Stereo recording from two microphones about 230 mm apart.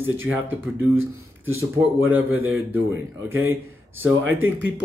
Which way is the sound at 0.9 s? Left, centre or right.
Right.